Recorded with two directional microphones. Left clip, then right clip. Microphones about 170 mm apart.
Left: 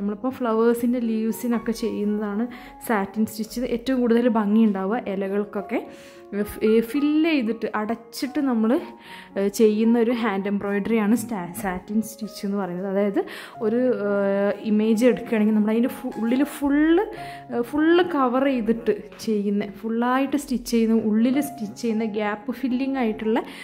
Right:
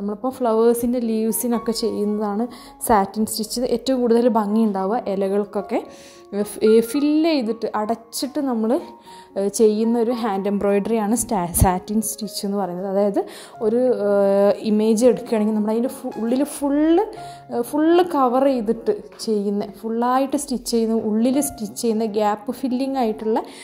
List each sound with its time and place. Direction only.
0.0 s a woman's voice: 10° left (ahead or behind)
0.3 s a woman's voice: 5° right (ahead or behind)
10.9 s speech: 5° right (ahead or behind)
11.2 s a woman's voice: 25° right (ahead or behind)
12.0 s a woman's voice: 10° right (ahead or behind)
12.4 s speech: centre (ahead or behind)
15.0 s speech: centre (ahead or behind)
18.7 s a woman's voice: 5° left (ahead or behind)
19.3 s a woman's voice: 5° right (ahead or behind)